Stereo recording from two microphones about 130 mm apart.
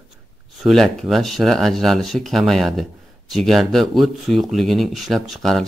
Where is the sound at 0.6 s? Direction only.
Centre (ahead or behind).